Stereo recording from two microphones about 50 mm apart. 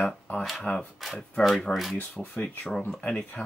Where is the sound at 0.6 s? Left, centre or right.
Left.